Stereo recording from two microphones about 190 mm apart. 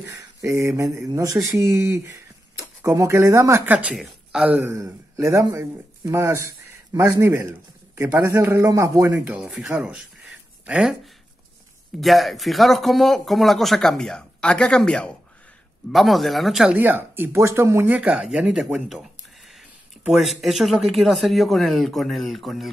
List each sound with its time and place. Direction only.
0.0 s speech: 15° right (ahead or behind)
12.0 s speech: centre (ahead or behind)